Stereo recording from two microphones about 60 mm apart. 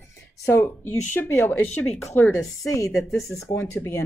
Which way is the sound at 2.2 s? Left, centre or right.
Left.